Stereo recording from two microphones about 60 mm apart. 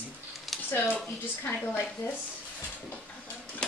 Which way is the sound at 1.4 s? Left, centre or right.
Left.